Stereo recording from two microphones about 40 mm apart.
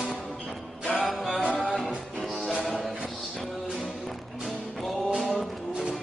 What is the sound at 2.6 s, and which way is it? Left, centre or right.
Music, centre.